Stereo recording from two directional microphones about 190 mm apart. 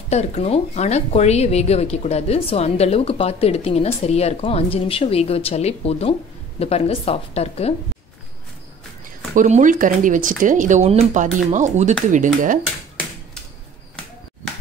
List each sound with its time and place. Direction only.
0.1 s speech: 35° left (ahead or behind)
9.3 s speech: 40° right (ahead or behind)